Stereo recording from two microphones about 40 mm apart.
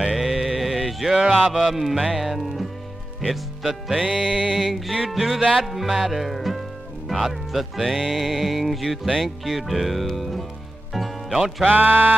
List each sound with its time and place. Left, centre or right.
0.0 s music: centre
4.0 s music: centre
4.7 s music: centre
11.7 s speech: right